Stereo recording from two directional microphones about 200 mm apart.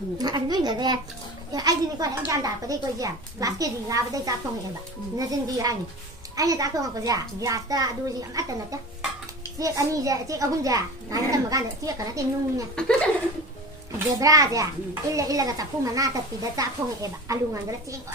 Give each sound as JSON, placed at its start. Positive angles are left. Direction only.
{"t": 0.2, "sound": "a child's voice", "side_deg": -20}
{"t": 12.7, "sound": "speech", "side_deg": 5}
{"t": 13.9, "sound": "a child's voice", "side_deg": -15}